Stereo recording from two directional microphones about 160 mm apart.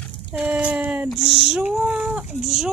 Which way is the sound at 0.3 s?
10° right (ahead or behind).